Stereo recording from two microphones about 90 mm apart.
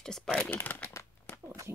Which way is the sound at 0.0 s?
5° left (ahead or behind).